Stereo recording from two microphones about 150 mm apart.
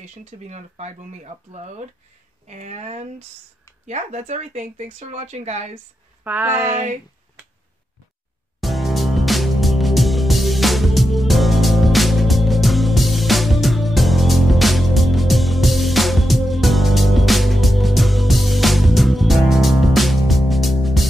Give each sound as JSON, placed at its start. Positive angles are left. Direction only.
{"t": 0.0, "sound": "speech", "side_deg": -50}
{"t": 6.2, "sound": "speech", "side_deg": -10}
{"t": 6.7, "sound": "speech", "side_deg": -50}
{"t": 8.5, "sound": "music", "side_deg": 0}